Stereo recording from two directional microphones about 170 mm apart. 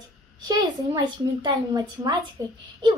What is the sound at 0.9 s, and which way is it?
A woman's voice, 25° right (ahead or behind).